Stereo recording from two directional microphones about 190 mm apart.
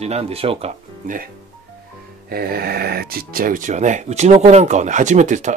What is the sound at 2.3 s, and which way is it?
Speech, 55° right (ahead or behind).